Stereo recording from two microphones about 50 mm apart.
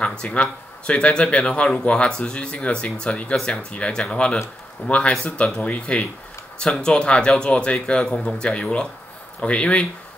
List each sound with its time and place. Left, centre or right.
0.0 s speech: centre